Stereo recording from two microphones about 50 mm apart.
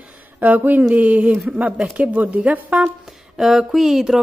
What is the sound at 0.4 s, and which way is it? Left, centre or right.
Speech, right.